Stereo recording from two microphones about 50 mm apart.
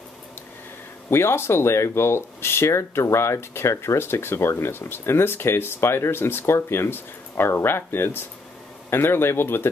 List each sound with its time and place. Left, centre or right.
1.1 s speech: left
4.0 s speech: left